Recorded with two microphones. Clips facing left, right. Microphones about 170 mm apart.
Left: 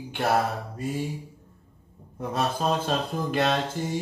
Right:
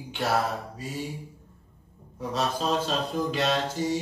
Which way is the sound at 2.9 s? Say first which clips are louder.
Left 1 dB; 55° left (ahead or behind).